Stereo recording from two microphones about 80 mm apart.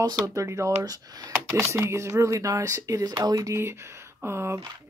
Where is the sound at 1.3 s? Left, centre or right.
Right.